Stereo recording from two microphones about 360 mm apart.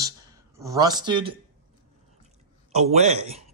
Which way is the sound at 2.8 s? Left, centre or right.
Centre.